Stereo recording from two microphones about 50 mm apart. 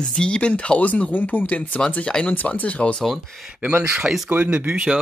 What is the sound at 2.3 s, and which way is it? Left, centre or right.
Speech, left.